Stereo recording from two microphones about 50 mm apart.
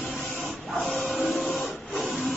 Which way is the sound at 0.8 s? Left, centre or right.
Centre.